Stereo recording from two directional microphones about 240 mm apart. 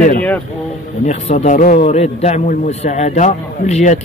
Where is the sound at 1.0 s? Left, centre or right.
Left.